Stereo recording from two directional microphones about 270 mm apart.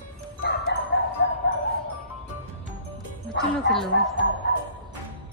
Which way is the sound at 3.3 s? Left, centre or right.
Centre.